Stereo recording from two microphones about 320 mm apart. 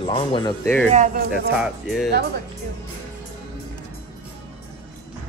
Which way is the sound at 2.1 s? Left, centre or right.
Right.